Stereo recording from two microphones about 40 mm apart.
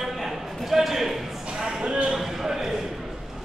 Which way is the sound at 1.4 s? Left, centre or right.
Right.